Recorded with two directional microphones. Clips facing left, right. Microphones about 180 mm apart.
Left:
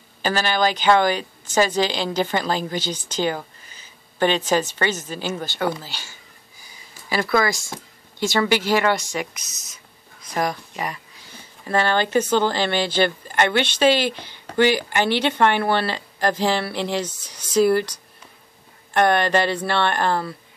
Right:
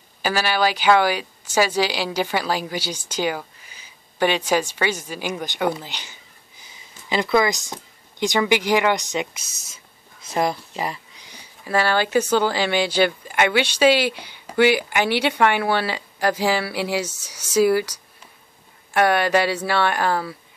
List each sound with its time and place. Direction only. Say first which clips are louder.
0.2 s speech: even; 10° right (ahead or behind); by 9.8 s 25° right (ahead or behind)
10.2 s a sound: right 2 dB; 25° right (ahead or behind)
11.2 s speech: left 1 dB; 10° right (ahead or behind)